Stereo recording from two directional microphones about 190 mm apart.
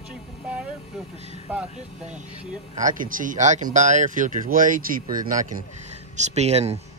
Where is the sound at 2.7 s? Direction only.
45° right (ahead or behind).